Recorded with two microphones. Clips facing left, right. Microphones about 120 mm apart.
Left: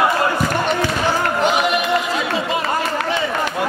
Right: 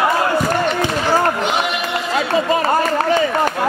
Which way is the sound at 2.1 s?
45° right (ahead or behind).